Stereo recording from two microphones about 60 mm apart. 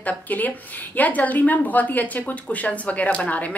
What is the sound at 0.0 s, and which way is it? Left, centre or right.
A woman's voice, left.